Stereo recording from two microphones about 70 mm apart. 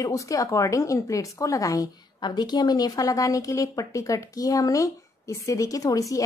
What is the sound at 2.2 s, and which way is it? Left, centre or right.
A woman's voice, left.